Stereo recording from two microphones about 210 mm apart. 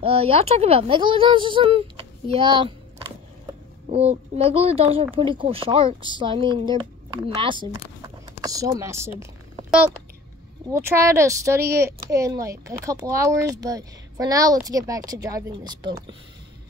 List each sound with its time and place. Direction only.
0.0 s speech: 25° right (ahead or behind)
10.7 s speech: 15° right (ahead or behind)